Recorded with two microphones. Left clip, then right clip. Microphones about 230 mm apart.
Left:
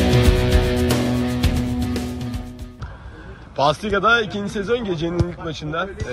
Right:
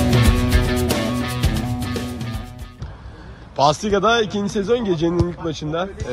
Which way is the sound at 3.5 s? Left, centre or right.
Centre.